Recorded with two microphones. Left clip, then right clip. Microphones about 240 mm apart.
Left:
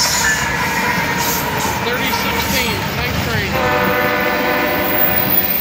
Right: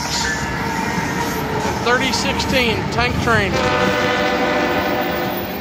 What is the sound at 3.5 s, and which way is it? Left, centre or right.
Speech, centre.